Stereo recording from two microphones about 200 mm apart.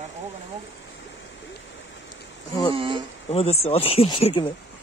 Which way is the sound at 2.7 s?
25° right (ahead or behind).